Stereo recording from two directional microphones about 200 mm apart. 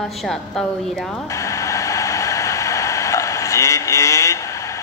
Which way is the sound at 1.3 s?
15° left (ahead or behind).